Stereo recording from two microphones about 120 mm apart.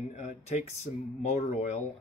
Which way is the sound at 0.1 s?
75° left (ahead or behind).